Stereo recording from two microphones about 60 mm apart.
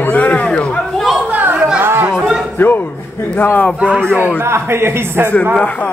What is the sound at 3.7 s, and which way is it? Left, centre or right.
Speech, centre.